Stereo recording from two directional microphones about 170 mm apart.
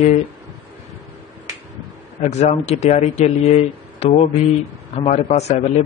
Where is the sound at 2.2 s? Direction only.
40° left (ahead or behind).